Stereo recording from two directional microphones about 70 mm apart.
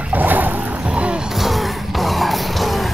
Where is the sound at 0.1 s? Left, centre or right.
Right.